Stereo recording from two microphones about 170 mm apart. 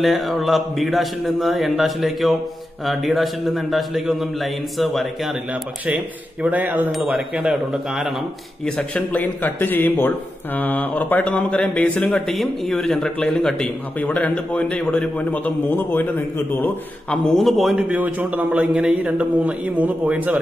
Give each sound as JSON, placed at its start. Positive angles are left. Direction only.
{"t": 0.0, "sound": "speech", "side_deg": 0}